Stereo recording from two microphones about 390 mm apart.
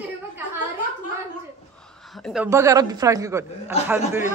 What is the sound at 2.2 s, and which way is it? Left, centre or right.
A woman's voice, centre.